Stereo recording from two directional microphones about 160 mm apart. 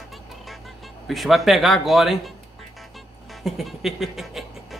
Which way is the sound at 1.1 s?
Centre (ahead or behind).